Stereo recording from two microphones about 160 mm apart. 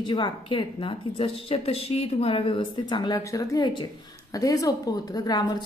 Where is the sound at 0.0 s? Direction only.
30° left (ahead or behind).